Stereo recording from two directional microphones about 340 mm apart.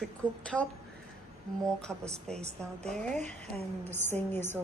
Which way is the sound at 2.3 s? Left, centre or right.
Centre.